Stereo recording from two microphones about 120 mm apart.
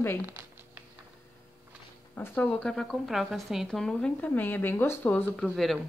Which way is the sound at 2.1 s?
15° left (ahead or behind).